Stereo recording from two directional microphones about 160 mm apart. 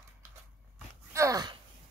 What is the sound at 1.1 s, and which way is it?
Speech, 20° right (ahead or behind).